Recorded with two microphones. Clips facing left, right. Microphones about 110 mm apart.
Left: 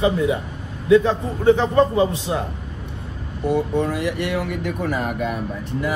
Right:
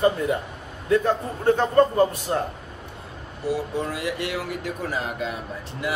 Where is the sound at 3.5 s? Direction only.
60° left (ahead or behind).